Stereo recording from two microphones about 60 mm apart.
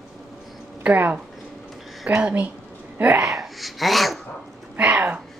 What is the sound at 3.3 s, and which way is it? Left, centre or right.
Speech, centre.